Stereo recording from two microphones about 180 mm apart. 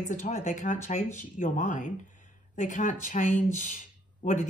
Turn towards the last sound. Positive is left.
turn(degrees=40)  # may be behind; listen again after turning